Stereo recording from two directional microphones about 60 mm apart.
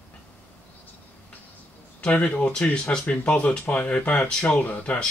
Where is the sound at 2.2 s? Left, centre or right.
Centre.